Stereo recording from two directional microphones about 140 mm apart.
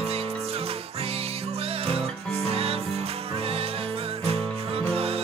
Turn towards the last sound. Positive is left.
turn(degrees=-45)  # may be behind; listen again after turning